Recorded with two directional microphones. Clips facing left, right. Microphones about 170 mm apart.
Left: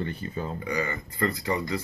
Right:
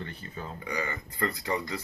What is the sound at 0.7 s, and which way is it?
Speech, 5° left (ahead or behind).